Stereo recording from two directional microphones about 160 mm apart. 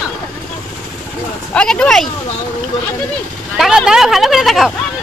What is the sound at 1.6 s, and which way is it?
Speech, 5° left (ahead or behind).